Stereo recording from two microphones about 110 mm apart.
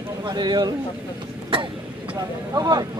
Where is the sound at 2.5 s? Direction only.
40° right (ahead or behind).